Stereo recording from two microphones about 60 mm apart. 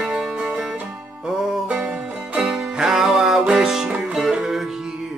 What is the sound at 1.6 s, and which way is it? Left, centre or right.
Music, right.